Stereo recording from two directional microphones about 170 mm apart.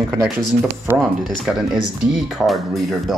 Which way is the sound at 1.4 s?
Centre (ahead or behind).